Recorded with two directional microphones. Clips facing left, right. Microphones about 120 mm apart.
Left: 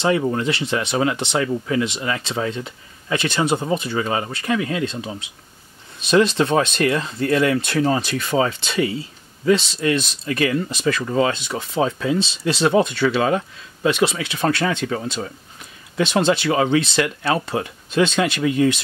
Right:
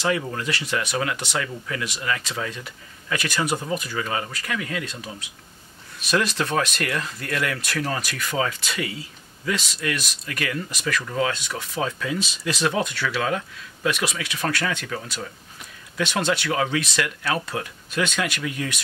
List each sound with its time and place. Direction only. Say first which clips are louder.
0.0 s speech: left 6 dB; 30° left (ahead or behind)